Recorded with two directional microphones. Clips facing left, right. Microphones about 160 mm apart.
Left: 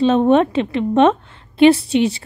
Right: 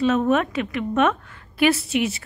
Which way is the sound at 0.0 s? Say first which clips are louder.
Left 6 dB; 30° left (ahead or behind).